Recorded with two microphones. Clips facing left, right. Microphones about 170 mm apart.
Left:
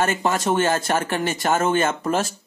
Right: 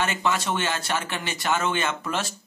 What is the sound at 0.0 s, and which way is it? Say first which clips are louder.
Speech: left 4 dB; 45° left (ahead or behind).